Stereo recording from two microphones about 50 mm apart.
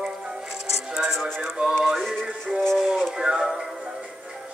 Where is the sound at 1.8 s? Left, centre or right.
Centre.